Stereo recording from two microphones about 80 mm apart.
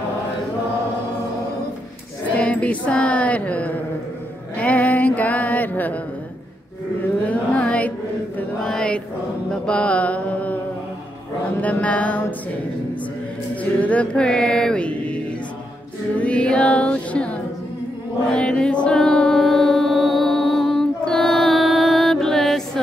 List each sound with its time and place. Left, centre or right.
2.3 s a sound: centre
4.6 s mantra: centre
7.2 s a sound: centre
8.6 s chant: centre
9.5 s mantra: centre
11.6 s mantra: centre
13.7 s music: centre
18.3 s chant: centre
18.9 s music: centre